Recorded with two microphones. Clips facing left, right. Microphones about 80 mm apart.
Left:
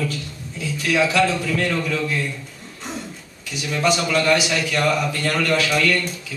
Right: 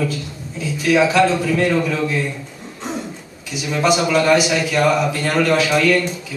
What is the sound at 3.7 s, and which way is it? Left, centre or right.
A man's voice, centre.